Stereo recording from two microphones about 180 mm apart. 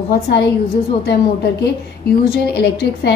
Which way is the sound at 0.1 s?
70° left (ahead or behind).